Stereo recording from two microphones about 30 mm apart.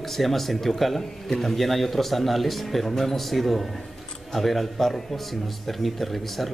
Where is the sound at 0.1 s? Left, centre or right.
Centre.